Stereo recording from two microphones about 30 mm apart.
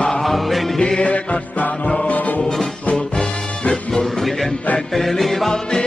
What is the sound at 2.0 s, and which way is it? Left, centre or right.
Music, left.